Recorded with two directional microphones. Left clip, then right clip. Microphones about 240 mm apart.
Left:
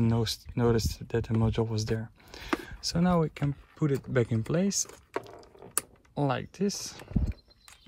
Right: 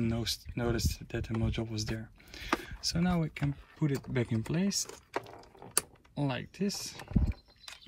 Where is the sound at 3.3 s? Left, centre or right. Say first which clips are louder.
Left 3 dB; centre.